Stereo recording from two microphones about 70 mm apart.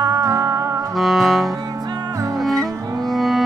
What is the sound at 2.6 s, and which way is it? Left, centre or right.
Cello, right.